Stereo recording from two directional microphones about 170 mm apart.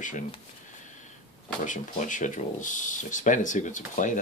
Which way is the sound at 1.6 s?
50° left (ahead or behind).